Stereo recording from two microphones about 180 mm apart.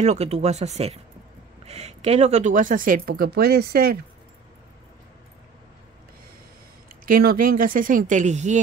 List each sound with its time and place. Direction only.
0.0 s speech: 40° right (ahead or behind); by 4.0 s 60° right (ahead or behind)
7.1 s speech: 50° right (ahead or behind)